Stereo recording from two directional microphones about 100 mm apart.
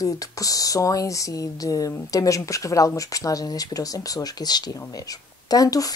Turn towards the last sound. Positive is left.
turn(degrees=40)  # may be behind; listen again after turning